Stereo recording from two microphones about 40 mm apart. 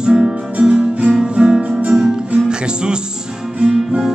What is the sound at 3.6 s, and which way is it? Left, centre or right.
Guitar, centre.